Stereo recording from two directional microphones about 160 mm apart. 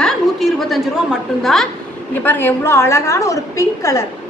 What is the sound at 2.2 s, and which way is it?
A woman's voice, 10° left (ahead or behind).